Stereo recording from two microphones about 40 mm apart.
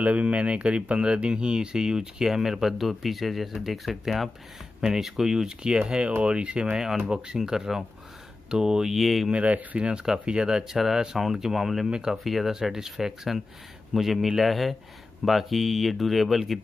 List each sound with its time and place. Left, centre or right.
0.0 s speech: right; by 8.9 s centre
8.9 s speech: centre
9.3 s speech: right
9.8 s speech: right; by 11.9 s centre
11.9 s speech: centre
12.2 s speech: centre